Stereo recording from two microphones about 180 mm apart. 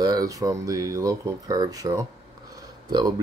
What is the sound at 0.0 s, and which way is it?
Speech, 20° right (ahead or behind).